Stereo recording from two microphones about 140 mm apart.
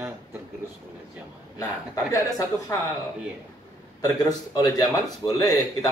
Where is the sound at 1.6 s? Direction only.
20° left (ahead or behind).